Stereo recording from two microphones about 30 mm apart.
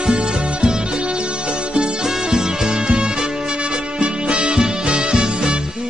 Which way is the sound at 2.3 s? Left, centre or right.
Centre.